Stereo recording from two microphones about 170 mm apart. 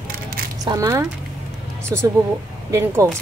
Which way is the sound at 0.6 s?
20° right (ahead or behind).